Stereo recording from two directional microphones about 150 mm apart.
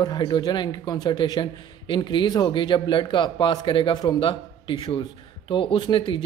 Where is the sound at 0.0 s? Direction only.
30° left (ahead or behind).